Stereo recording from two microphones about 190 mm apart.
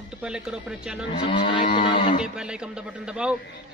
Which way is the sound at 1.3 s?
25° left (ahead or behind).